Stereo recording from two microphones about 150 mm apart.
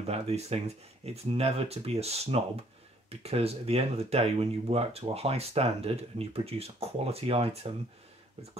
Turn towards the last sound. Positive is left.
turn(degrees=-40)  # may be behind; listen again after turning